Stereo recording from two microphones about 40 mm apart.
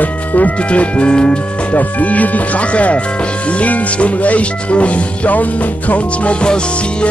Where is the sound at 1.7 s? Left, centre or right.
Left.